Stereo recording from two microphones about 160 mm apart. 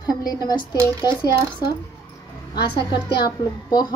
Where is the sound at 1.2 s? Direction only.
25° left (ahead or behind).